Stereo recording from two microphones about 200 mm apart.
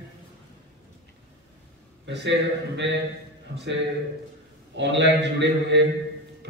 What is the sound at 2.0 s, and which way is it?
A man's voice, 60° right (ahead or behind).